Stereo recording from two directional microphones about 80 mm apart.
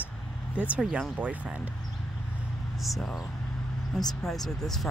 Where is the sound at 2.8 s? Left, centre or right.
Centre.